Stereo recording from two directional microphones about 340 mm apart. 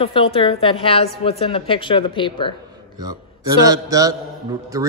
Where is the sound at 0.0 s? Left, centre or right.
Centre.